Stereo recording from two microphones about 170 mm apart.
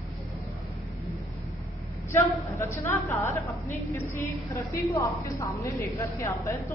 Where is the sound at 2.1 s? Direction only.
15° left (ahead or behind).